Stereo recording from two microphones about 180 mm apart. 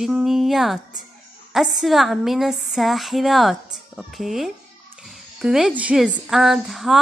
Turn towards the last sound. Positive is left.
turn(degrees=0)  # may be behind; listen again after turning